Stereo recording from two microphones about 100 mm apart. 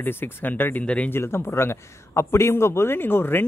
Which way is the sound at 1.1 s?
25° left (ahead or behind).